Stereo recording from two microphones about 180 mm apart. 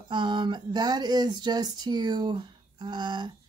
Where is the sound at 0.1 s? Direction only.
25° right (ahead or behind).